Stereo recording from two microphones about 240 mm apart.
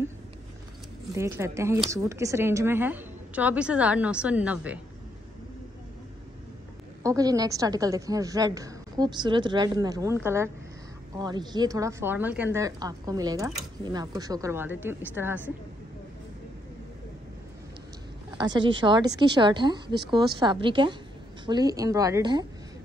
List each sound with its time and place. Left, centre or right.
1.1 s a woman's voice: centre
7.0 s a woman's voice: centre
18.4 s a woman's voice: centre